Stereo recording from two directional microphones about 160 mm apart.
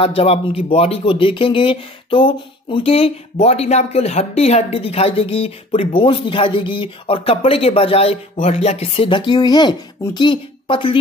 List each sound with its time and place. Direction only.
0.0 s speech: 35° left (ahead or behind)